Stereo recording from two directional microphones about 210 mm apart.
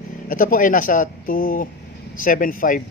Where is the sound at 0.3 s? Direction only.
40° left (ahead or behind).